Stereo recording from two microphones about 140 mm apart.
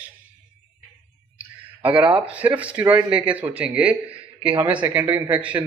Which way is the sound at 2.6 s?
10° right (ahead or behind).